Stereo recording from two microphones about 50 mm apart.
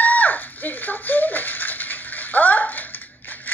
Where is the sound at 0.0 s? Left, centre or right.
Left.